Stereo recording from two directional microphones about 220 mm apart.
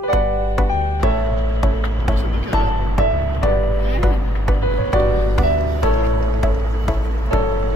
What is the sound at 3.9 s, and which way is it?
Music, centre (ahead or behind).